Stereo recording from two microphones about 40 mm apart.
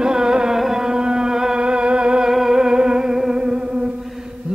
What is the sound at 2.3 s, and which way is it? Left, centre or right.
Music, centre.